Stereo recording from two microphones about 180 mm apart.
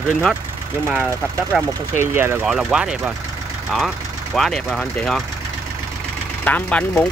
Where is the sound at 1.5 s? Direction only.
Centre (ahead or behind).